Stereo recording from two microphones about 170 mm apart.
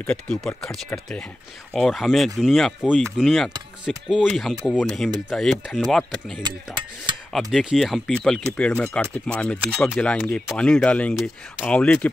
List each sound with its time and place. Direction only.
0.0 s speech: 5° left (ahead or behind)
6.4 s mechanisms: 25° right (ahead or behind)
7.5 s speech: centre (ahead or behind)